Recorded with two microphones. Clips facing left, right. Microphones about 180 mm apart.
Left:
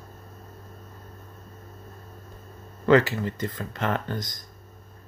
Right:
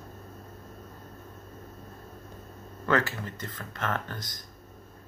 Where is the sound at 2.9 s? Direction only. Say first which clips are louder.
Left 8 dB; 15° left (ahead or behind).